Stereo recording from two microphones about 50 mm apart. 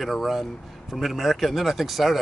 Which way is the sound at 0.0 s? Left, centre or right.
Centre.